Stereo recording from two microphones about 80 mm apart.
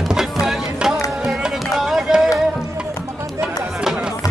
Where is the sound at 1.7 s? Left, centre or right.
Centre.